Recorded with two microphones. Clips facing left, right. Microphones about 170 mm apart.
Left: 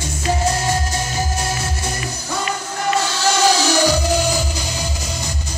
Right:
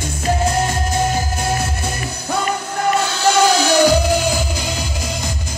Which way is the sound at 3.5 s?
55° right (ahead or behind).